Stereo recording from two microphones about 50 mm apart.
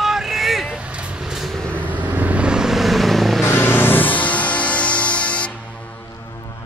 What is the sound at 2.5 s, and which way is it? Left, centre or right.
Vehicle, centre.